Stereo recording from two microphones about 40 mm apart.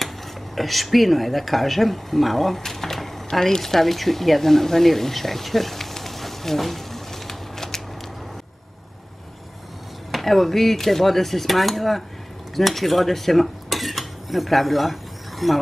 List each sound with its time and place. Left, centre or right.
0.6 s speech: centre
10.1 s speech: centre
12.5 s cutlery: centre